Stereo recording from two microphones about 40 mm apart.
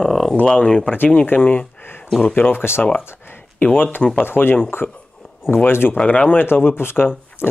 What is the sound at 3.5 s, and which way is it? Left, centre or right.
Speech, left.